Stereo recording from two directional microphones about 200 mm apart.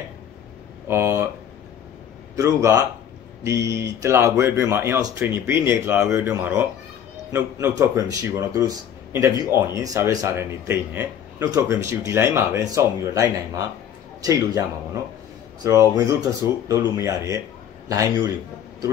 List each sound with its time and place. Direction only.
0.8 s a sound: 10° right (ahead or behind)
2.3 s a man's voice: 15° right (ahead or behind)
15.6 s a man's voice: 15° right (ahead or behind)